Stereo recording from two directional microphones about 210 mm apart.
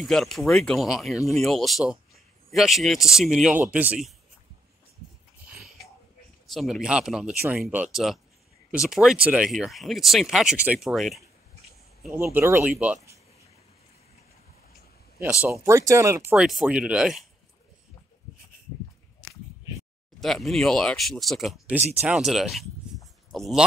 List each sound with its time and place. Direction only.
0.0 s speech: centre (ahead or behind)
5.5 s a sound: centre (ahead or behind)
6.4 s speech: centre (ahead or behind)
15.4 s speech: 15° right (ahead or behind)
16.3 s speech: 5° right (ahead or behind)
20.2 s speech: centre (ahead or behind)